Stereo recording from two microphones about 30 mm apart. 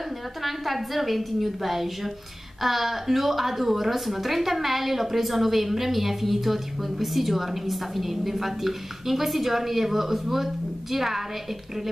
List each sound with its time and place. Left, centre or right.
0.4 s a woman's voice: centre